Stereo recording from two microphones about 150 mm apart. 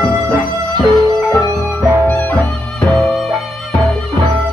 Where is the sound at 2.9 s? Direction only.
10° left (ahead or behind).